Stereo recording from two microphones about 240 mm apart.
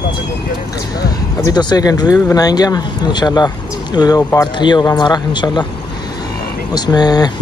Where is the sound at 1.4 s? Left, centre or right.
Centre.